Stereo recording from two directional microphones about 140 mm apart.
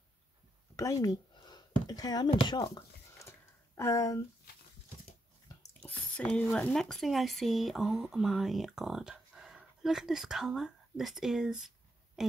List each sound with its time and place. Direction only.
0.7 s a sound: 25° left (ahead or behind)
5.7 s drip: 10° left (ahead or behind)
6.2 s speech: 10° left (ahead or behind)